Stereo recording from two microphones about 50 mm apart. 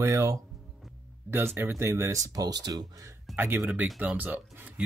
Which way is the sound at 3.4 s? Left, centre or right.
Right.